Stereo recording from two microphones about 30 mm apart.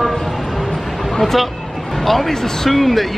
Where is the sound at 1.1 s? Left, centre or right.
Centre.